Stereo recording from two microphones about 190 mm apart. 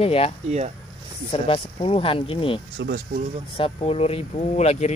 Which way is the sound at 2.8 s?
65° right (ahead or behind).